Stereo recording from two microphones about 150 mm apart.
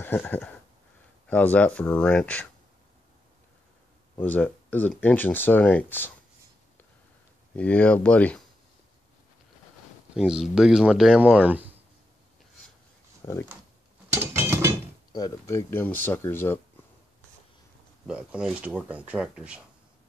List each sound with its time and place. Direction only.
0.0 s speech: 10° left (ahead or behind)
4.2 s speech: 10° left (ahead or behind)
7.5 s speech: 10° left (ahead or behind)
10.1 s speech: 5° right (ahead or behind)
13.2 s speech: 20° left (ahead or behind)
14.1 s a sound: 15° right (ahead or behind)
15.1 s speech: 25° left (ahead or behind)
18.0 s speech: 5° right (ahead or behind)